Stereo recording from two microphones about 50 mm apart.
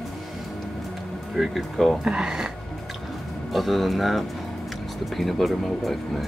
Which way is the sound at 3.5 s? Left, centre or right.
Centre.